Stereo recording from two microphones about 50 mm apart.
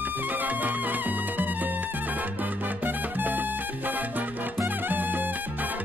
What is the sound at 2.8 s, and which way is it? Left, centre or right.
Music, right.